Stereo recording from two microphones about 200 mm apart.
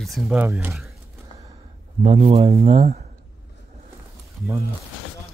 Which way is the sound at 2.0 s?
30° right (ahead or behind).